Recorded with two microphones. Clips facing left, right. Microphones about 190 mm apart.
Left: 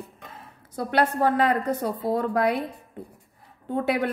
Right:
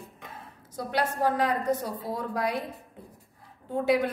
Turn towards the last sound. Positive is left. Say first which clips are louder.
# even
turn(degrees=60)  # may be behind; listen again after turning